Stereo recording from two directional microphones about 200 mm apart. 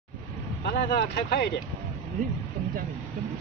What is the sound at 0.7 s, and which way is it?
Speech, 55° left (ahead or behind).